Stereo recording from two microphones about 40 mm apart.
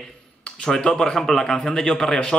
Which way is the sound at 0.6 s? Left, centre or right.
Centre.